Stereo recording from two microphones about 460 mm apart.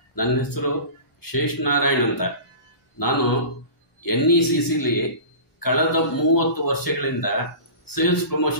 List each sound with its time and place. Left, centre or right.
0.1 s a man's voice: left